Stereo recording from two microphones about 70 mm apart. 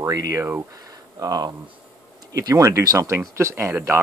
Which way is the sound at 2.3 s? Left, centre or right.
Right.